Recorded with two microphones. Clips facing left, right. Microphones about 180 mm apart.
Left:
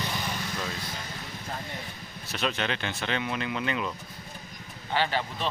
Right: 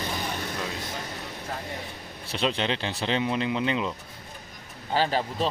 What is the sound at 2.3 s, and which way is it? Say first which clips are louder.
Speech: right 3 dB; 30° right (ahead or behind).